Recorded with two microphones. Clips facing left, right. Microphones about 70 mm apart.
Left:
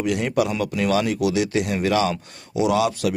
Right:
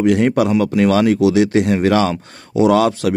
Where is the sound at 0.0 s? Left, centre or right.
Right.